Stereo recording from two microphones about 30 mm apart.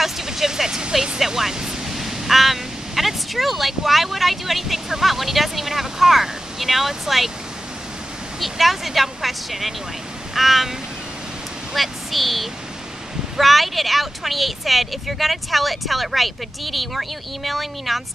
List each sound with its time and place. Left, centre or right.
0.0 s speech: centre
1.2 s speech: centre
1.5 s pink noise: centre
2.0 s speech: centre
8.4 s speech: centre
11.7 s a woman's voice: centre